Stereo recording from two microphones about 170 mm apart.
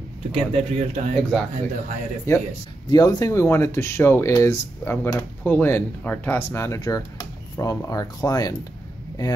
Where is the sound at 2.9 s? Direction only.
20° left (ahead or behind).